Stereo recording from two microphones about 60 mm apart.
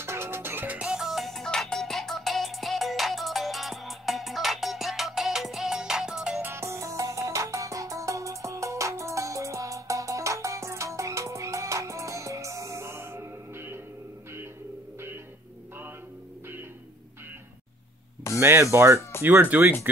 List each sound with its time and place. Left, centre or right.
0.0 s music: right
0.8 s music: centre
6.5 s music: right
18.3 s music: left
18.6 s speech: right
19.5 s speech: right